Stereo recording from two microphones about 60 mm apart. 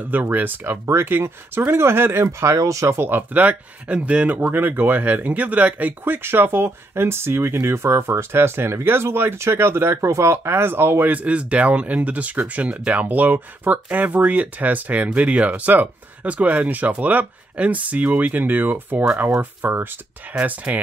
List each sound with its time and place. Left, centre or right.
0.0 s speech: right
3.0 s speech: right
3.3 s speech: right
11.1 s speech: right
20.3 s speech: right